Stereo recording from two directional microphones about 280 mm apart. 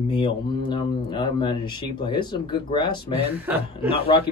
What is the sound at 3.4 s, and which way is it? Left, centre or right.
Speech, centre.